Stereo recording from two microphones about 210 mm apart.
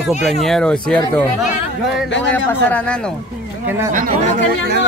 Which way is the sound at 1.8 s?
Centre (ahead or behind).